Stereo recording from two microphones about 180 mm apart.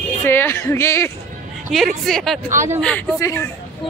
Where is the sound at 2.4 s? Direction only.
15° right (ahead or behind).